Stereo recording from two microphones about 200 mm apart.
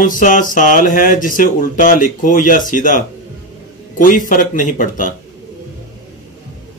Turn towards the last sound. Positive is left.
turn(degrees=40)  # may be behind; listen again after turning